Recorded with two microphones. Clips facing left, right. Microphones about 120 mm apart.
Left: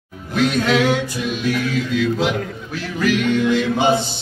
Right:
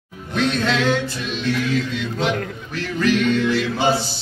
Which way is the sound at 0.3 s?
5° left (ahead or behind).